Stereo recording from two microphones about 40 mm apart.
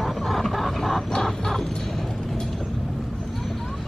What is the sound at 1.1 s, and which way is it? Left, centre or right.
Chicken, centre.